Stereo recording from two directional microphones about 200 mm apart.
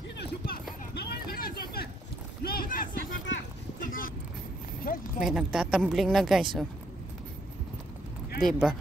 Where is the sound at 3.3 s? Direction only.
70° left (ahead or behind).